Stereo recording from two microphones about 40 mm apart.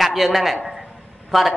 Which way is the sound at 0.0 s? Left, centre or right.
Centre.